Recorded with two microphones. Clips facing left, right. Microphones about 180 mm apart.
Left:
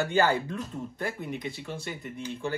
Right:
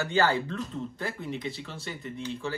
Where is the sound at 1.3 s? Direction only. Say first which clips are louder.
Right 1 dB; 55° left (ahead or behind).